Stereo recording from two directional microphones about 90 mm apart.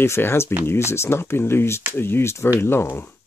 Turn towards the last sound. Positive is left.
turn(degrees=25)  # may be behind; listen again after turning